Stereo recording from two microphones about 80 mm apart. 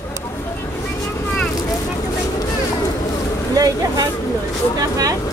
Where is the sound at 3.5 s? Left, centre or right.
Right.